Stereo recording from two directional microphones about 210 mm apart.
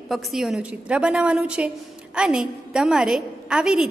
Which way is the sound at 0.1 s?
Centre (ahead or behind).